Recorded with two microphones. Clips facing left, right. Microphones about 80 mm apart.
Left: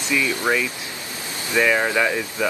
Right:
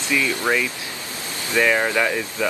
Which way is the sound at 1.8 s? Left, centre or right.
Centre.